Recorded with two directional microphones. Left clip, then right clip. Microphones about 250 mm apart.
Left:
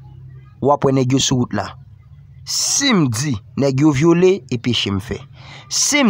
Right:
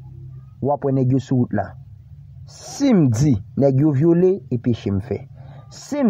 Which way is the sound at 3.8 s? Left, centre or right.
Left.